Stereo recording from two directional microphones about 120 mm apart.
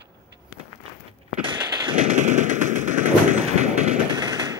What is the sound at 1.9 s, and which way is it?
Machine gun, 70° right (ahead or behind).